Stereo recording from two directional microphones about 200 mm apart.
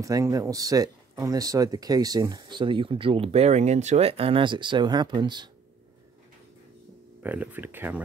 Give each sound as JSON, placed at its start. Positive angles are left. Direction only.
{"t": 0.0, "sound": "speech", "side_deg": -15}
{"t": 7.2, "sound": "speech", "side_deg": -10}